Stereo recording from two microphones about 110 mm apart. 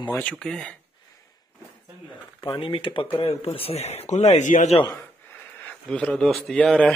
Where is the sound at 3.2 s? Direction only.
65° left (ahead or behind); by 4.7 s 85° left.